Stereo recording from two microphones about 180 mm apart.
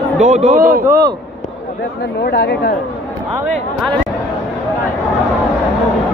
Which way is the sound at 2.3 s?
65° left (ahead or behind).